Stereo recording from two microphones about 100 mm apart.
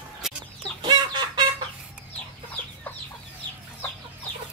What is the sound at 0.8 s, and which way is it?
Chicken, 50° right (ahead or behind).